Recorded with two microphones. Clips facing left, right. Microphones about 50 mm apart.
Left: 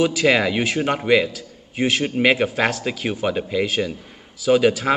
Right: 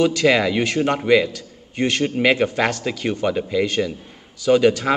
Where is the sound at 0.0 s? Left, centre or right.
Centre.